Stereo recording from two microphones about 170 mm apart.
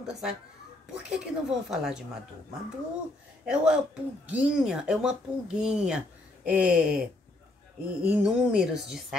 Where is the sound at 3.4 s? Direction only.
5° right (ahead or behind).